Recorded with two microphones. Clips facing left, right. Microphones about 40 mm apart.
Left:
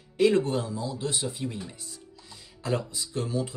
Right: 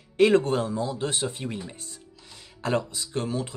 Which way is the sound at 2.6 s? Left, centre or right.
Right.